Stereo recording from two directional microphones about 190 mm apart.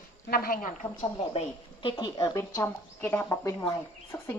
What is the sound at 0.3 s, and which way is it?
Speech, 50° left (ahead or behind).